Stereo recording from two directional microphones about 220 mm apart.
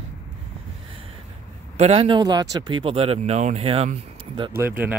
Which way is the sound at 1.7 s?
30° right (ahead or behind).